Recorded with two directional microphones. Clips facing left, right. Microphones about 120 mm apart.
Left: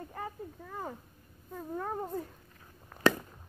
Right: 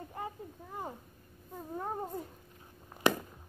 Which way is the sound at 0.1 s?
20° right (ahead or behind).